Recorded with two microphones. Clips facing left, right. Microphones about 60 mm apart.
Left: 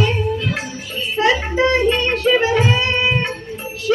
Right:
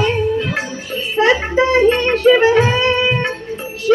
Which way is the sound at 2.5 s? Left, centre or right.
Right.